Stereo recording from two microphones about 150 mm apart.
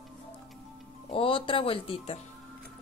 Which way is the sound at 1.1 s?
35° left (ahead or behind).